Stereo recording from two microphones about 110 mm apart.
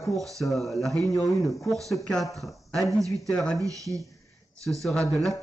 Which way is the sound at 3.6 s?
30° right (ahead or behind).